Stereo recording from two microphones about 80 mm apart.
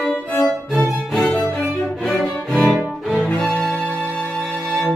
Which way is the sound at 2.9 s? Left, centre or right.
Centre.